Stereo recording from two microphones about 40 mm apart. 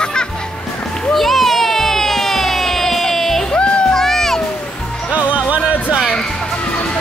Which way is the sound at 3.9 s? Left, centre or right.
Centre.